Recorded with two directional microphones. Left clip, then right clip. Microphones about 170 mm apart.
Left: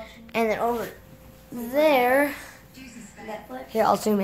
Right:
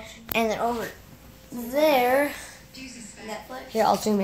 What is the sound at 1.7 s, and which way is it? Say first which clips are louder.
Speech: left 1 dB; 5° left (ahead or behind).